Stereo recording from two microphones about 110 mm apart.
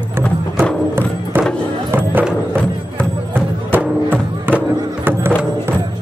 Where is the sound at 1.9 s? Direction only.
15° right (ahead or behind).